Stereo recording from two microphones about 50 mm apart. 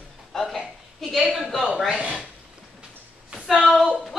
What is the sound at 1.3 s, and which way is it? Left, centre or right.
Speech, centre.